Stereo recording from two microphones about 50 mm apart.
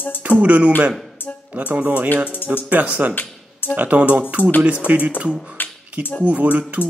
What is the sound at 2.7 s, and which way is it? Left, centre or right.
Speech, right.